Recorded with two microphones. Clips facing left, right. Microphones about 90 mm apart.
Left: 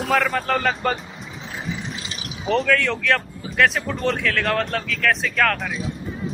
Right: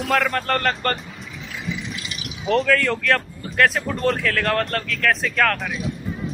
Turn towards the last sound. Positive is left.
turn(degrees=0)  # may be behind; listen again after turning